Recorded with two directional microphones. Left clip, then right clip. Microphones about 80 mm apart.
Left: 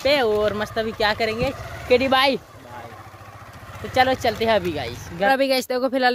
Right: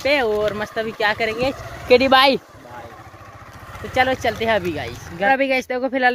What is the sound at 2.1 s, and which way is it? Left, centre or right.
Speech, right.